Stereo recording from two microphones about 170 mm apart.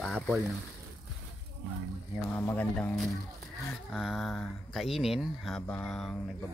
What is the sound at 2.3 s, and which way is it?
Speech, 10° left (ahead or behind).